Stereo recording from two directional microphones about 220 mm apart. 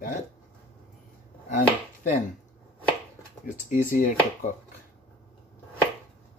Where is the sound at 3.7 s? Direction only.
40° left (ahead or behind).